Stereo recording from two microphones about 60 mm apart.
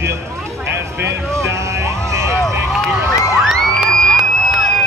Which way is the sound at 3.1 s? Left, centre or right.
Left.